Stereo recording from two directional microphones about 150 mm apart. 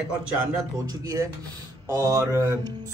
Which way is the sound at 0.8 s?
20° right (ahead or behind).